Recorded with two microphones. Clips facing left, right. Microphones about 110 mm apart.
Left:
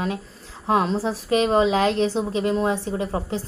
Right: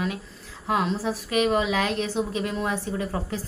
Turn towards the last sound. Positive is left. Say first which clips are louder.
# left 3 dB
turn(degrees=25)  # may be behind; listen again after turning